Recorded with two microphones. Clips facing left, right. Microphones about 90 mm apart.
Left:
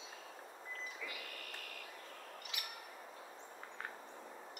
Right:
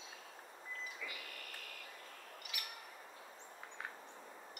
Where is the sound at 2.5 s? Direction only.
25° left (ahead or behind).